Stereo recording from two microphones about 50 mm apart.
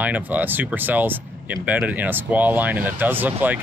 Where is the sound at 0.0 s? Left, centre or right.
Right.